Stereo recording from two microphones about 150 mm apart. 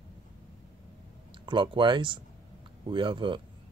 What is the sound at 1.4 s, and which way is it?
Speech, 35° right (ahead or behind).